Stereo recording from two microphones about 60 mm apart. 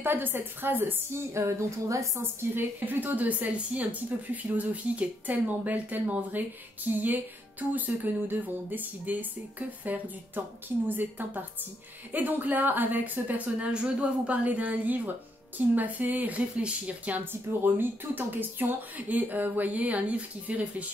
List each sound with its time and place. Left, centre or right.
0.0 s speech: right
2.5 s a woman's voice: right
17.2 s a woman's voice: right